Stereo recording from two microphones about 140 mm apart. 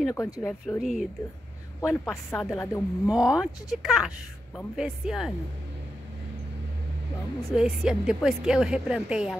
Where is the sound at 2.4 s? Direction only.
20° left (ahead or behind).